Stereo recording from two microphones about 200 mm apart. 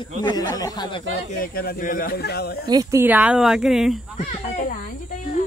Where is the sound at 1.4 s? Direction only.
45° left (ahead or behind).